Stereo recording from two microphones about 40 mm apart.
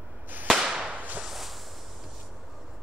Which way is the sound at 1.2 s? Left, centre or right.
Centre.